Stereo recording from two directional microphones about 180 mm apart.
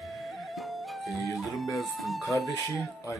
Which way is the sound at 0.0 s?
Centre (ahead or behind).